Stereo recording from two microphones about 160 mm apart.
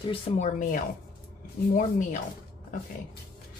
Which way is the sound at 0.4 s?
50° left (ahead or behind).